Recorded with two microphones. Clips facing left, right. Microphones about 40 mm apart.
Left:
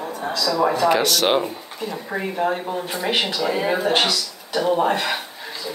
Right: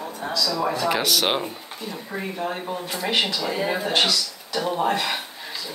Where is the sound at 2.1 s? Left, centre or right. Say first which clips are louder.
Left 6 dB; left.